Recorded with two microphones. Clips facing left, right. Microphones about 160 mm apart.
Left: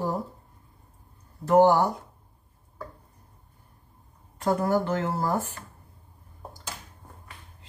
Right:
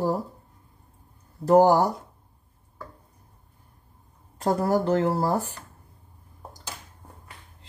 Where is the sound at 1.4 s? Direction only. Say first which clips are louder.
Right 1 dB; 40° right (ahead or behind).